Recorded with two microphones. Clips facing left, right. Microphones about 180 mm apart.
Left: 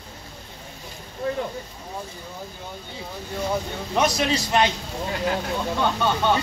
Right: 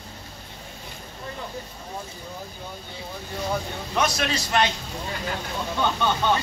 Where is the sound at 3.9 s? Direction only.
20° left (ahead or behind).